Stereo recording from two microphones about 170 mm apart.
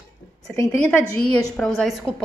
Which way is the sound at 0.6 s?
10° left (ahead or behind).